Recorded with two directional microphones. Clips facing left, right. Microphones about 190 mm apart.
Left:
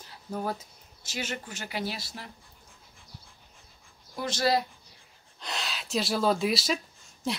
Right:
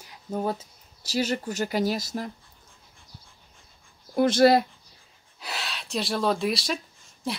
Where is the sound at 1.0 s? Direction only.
35° right (ahead or behind).